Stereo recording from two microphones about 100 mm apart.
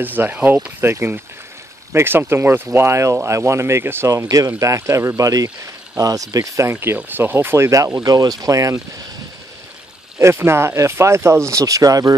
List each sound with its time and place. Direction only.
0.0 s speech: 20° right (ahead or behind)
10.1 s speech: 25° right (ahead or behind)